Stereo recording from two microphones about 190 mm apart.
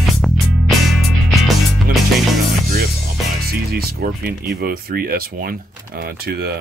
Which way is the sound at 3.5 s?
55° right (ahead or behind).